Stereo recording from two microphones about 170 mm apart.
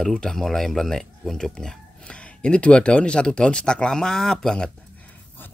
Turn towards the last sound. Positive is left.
turn(degrees=5)  # may be behind; listen again after turning